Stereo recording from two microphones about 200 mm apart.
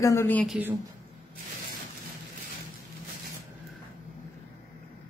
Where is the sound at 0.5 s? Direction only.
10° right (ahead or behind).